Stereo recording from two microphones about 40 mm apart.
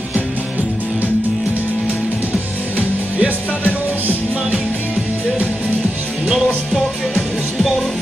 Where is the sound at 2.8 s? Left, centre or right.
Right.